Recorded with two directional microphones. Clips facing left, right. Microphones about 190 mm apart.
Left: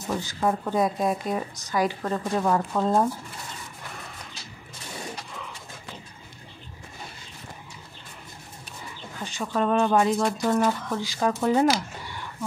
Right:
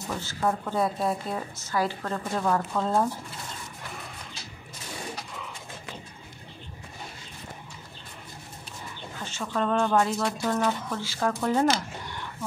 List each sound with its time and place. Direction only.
0.2 s a woman's voice: 15° left (ahead or behind)
9.2 s a woman's voice: 15° left (ahead or behind)